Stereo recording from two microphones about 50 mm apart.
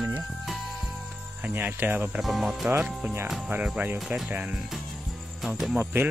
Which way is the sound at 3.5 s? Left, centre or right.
Right.